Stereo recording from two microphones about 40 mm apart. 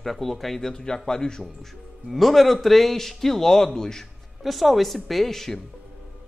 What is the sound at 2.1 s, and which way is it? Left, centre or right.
Speech, centre.